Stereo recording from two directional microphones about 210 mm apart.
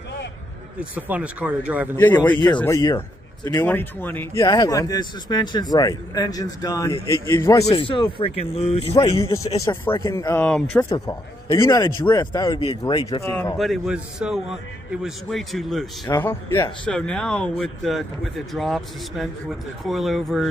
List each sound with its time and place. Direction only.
0.7 s speech: 5° right (ahead or behind)
2.0 s speech: 10° left (ahead or behind)
7.7 s speech: 25° left (ahead or behind)
9.0 s speech: 15° left (ahead or behind)
13.6 s speech: centre (ahead or behind)